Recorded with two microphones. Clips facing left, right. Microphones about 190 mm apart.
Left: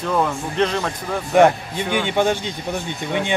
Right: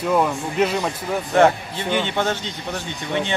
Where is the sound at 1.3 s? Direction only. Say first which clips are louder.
Left 2 dB; 15° left (ahead or behind).